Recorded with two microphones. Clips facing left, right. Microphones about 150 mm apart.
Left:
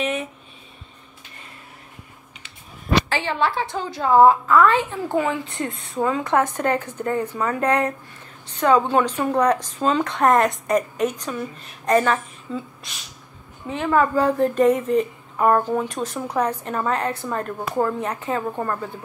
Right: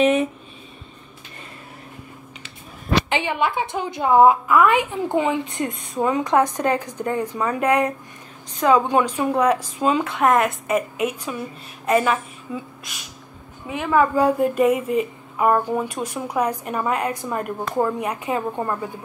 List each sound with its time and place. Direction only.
3.1 s a woman's voice: 15° right (ahead or behind)